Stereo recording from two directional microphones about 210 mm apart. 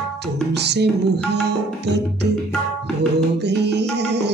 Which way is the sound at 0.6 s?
55° right (ahead or behind).